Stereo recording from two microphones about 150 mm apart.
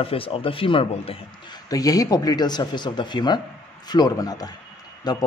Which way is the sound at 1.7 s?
25° left (ahead or behind).